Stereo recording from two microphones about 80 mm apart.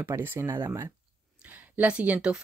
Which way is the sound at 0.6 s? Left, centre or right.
Right.